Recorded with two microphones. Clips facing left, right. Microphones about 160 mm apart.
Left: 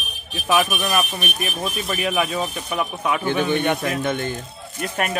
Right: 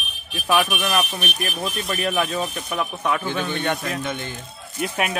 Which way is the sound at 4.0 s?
55° left (ahead or behind).